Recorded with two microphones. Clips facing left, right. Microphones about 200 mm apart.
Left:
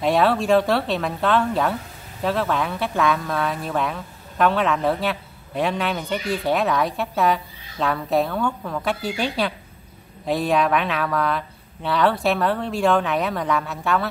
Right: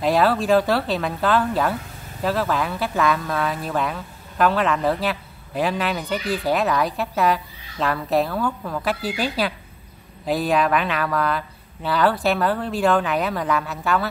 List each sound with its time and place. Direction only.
0.0 s speech: centre (ahead or behind)